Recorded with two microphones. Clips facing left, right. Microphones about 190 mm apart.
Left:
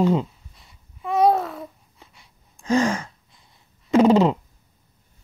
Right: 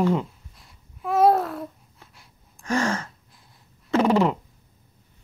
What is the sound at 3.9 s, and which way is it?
Owl, 20° left (ahead or behind).